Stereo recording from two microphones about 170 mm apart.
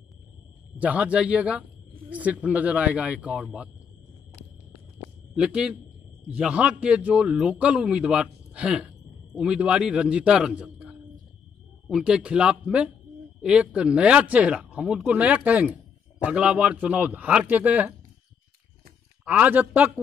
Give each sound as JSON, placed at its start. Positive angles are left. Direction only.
{"t": 0.7, "sound": "speech", "side_deg": -10}
{"t": 5.3, "sound": "a man's voice", "side_deg": -5}
{"t": 19.2, "sound": "speech", "side_deg": -10}